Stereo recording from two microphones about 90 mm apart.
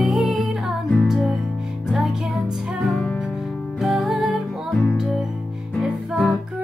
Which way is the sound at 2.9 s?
25° left (ahead or behind).